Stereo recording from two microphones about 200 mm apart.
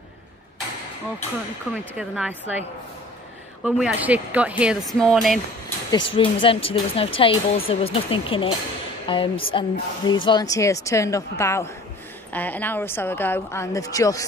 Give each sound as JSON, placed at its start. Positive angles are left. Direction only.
{"t": 1.7, "sound": "speech", "side_deg": -5}
{"t": 3.6, "sound": "speech", "side_deg": -5}
{"t": 5.9, "sound": "a woman's voice", "side_deg": 25}